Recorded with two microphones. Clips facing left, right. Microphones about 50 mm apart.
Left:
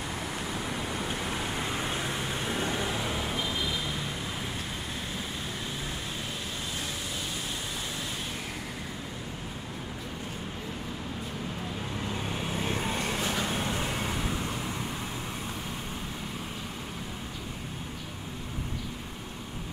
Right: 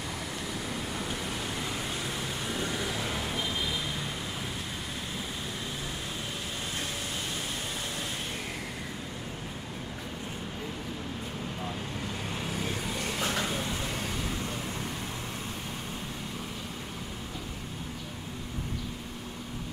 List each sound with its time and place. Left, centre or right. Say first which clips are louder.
0.6 s vehicle: left 2 dB; left
3.1 s vehicle: left 1 dB; centre
12.4 s vehicle: left 3 dB; left